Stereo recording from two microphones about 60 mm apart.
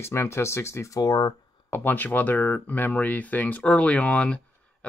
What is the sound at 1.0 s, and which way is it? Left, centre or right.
Speech, left.